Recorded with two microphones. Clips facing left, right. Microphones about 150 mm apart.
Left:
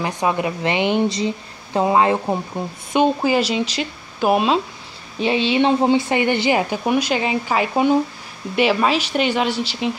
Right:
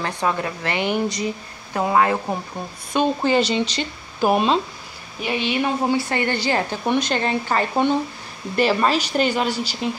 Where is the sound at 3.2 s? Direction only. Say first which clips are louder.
Even; 5° left (ahead or behind).